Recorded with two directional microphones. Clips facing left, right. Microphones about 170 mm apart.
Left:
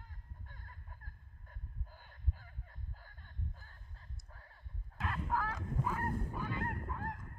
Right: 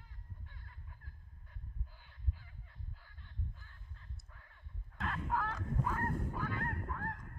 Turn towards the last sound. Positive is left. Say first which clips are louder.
# even
turn(degrees=20)  # may be behind; listen again after turning